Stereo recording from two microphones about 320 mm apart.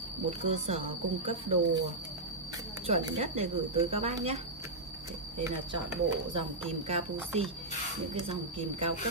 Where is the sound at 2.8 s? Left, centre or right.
Centre.